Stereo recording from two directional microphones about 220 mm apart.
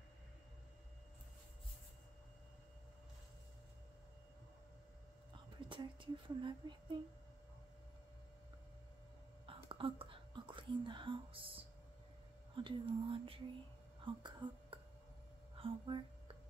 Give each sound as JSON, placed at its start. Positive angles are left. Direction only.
{"t": 5.7, "sound": "speech", "side_deg": -20}
{"t": 9.5, "sound": "whispering", "side_deg": -25}
{"t": 12.5, "sound": "speech", "side_deg": -20}